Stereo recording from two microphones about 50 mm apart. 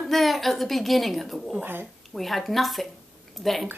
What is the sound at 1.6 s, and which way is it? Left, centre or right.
Speech, right.